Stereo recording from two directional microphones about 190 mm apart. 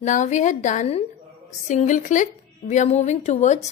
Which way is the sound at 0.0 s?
40° left (ahead or behind).